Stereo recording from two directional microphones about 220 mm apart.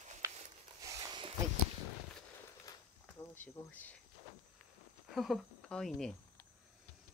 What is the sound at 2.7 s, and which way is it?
Insect, 10° left (ahead or behind).